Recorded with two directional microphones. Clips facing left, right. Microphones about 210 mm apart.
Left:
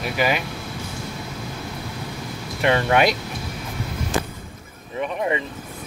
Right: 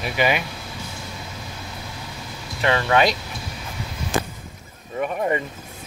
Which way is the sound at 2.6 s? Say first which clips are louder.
Left 1 dB; 10° left (ahead or behind).